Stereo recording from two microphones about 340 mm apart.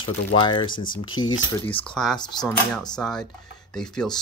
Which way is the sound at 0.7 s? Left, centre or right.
Left.